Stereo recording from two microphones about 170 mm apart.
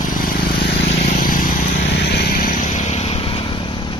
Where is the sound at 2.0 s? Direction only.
75° left (ahead or behind); by 3.9 s 30° left (ahead or behind).